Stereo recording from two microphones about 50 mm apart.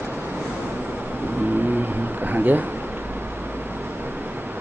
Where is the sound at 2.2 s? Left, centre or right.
Right.